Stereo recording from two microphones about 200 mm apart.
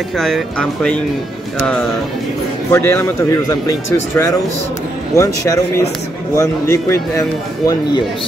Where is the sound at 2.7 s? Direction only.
10° left (ahead or behind).